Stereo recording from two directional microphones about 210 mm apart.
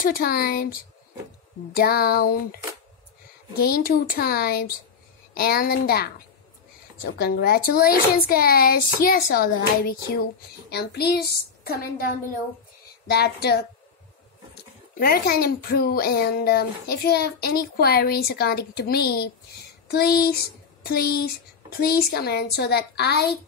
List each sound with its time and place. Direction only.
0.0 s speech: 45° left (ahead or behind)
13.1 s speech: 50° left (ahead or behind)